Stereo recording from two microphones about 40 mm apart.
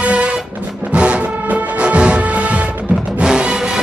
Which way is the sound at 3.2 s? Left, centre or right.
Right.